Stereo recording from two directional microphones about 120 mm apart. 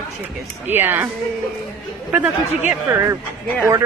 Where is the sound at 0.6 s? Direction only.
20° right (ahead or behind).